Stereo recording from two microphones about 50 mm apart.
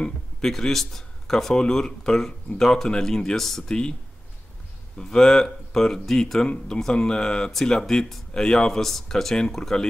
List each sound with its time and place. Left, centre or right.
0.0 s speech: centre
4.9 s speech: centre
6.4 s speech: centre